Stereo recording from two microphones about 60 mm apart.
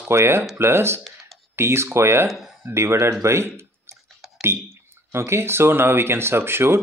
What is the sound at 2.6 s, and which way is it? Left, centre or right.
Speech, right.